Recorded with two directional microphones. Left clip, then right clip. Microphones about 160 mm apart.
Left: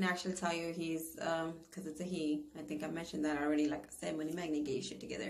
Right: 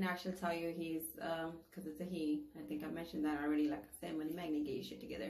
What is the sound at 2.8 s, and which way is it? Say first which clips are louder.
A woman's voice: left 3 dB; 20° left (ahead or behind).